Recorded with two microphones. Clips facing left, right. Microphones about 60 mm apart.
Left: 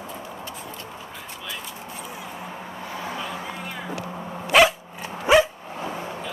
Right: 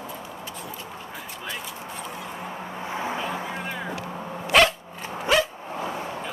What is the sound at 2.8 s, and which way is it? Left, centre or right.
Vehicle, right.